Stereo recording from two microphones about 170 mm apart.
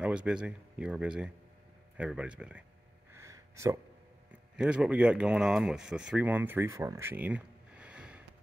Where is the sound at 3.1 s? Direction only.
15° right (ahead or behind).